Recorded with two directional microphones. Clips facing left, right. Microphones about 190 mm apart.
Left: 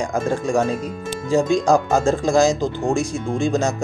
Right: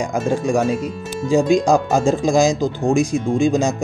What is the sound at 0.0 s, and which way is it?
Speech, 10° right (ahead or behind).